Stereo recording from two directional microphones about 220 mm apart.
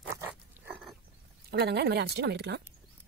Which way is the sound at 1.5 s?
50° right (ahead or behind).